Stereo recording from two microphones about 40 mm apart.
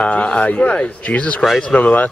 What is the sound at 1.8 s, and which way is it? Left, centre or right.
Speech, left.